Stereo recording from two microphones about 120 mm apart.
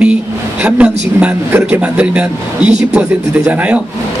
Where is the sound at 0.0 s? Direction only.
10° right (ahead or behind).